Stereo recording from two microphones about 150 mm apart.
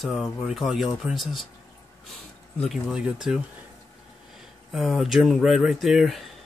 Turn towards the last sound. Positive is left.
turn(degrees=0)  # may be behind; listen again after turning